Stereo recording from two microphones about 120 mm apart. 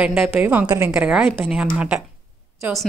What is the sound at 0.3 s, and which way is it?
Speech, 15° right (ahead or behind).